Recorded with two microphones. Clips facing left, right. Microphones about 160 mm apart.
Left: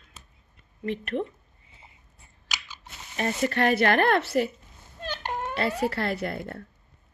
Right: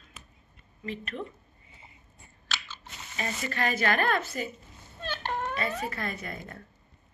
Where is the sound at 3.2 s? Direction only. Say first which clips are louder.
Left 7 dB; 65° left (ahead or behind).